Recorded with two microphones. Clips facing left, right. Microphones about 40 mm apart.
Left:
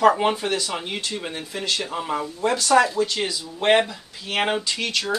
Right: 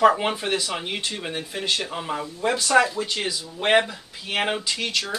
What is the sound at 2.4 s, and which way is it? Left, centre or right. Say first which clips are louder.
Speech: left 1 dB; centre.